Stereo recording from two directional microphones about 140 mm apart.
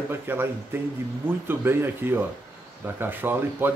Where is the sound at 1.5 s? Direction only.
15° right (ahead or behind).